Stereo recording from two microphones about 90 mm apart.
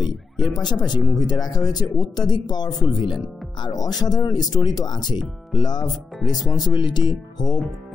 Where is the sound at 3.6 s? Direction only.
50° left (ahead or behind).